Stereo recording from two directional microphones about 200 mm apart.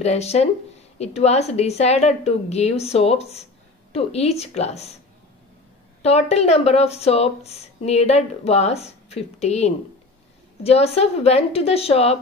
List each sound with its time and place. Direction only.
0.0 s a woman's voice: 30° left (ahead or behind)
6.0 s a woman's voice: 30° left (ahead or behind)